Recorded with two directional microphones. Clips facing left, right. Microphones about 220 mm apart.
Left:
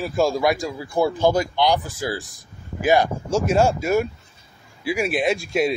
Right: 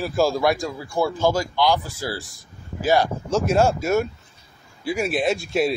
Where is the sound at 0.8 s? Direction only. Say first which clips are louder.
Left 2 dB; 20° left (ahead or behind).